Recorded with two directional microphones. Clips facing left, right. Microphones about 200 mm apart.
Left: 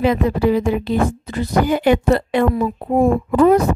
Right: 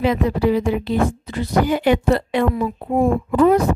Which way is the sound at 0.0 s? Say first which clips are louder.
Left 2 dB; 45° left (ahead or behind).